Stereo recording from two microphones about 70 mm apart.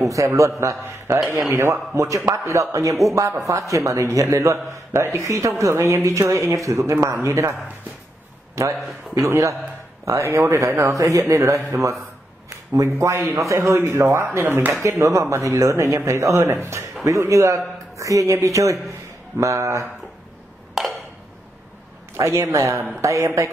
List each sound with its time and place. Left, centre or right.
0.0 s speech: right
8.6 s speech: right
12.7 s speech: right
14.4 s speech: right
14.8 s speech: right
20.8 s a sound: centre
22.1 s speech: right